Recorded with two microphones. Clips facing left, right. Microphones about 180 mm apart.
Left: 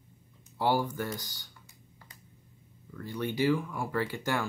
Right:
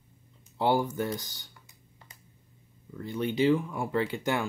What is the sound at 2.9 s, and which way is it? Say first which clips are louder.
Speech: right 3 dB; 20° right (ahead or behind).